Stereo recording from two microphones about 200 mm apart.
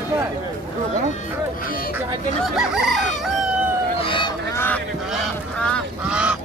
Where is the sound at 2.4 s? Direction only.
5° right (ahead or behind).